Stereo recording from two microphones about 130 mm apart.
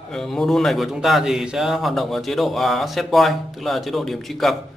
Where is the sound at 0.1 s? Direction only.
5° left (ahead or behind).